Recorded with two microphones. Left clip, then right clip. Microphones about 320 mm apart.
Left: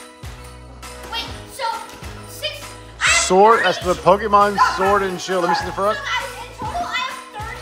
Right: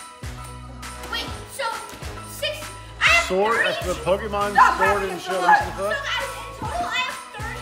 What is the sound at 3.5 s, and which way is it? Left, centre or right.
Speech, centre.